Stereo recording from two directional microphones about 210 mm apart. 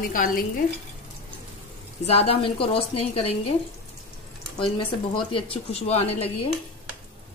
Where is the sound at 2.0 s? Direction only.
30° left (ahead or behind).